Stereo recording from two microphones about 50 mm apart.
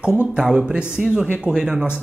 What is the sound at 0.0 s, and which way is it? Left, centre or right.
Speech, right.